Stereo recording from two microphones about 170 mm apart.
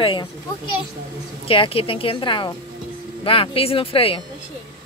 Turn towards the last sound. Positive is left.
turn(degrees=35)  # may be behind; listen again after turning